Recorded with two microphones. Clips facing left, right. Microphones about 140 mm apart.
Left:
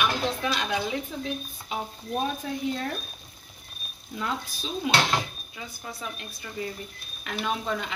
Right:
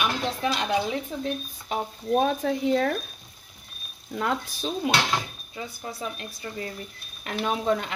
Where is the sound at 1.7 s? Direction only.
65° right (ahead or behind).